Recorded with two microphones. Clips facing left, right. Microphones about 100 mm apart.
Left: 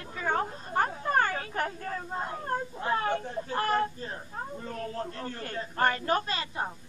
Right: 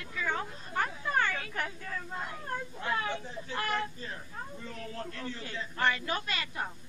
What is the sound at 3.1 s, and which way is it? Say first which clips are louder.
A woman's voice: left 6 dB; 50° left (ahead or behind).